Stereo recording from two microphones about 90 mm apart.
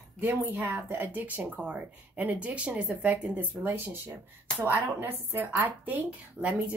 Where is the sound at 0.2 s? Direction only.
25° right (ahead or behind).